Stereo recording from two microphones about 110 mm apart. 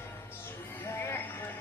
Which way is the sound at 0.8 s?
25° left (ahead or behind).